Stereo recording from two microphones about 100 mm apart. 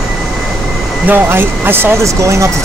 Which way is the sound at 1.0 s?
20° right (ahead or behind).